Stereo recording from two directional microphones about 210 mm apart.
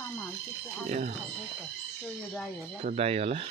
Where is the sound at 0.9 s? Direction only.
35° right (ahead or behind).